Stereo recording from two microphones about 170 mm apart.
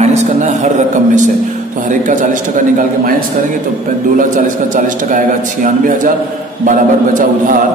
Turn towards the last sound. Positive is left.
turn(degrees=-50)  # may be behind; listen again after turning